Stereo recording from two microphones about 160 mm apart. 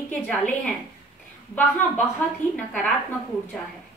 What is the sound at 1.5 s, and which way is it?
A woman's voice, 10° left (ahead or behind).